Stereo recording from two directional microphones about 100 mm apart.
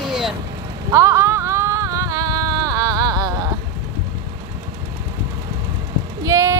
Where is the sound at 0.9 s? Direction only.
30° right (ahead or behind).